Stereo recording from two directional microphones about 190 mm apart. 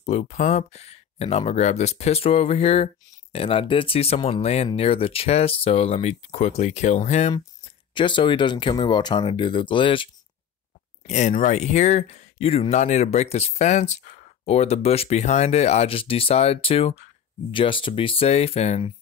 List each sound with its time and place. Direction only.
0.0 s speech: 35° left (ahead or behind)
7.9 s speech: 25° left (ahead or behind)
11.1 s speech: 40° left (ahead or behind)